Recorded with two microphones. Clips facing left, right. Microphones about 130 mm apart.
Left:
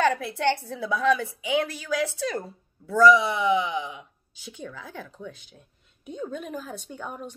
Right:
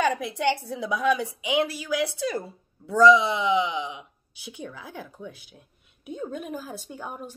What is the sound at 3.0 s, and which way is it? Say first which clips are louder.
A woman's voice: right 1 dB; 20° right (ahead or behind).